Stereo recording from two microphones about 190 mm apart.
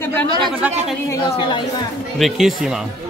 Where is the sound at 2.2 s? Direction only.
Centre (ahead or behind).